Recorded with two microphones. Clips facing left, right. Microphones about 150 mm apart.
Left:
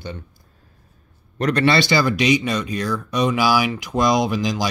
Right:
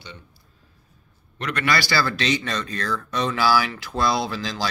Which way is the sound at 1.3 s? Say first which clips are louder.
Left 9 dB; 40° left (ahead or behind).